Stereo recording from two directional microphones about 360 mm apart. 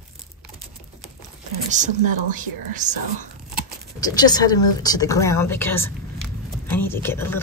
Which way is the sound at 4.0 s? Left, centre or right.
Centre.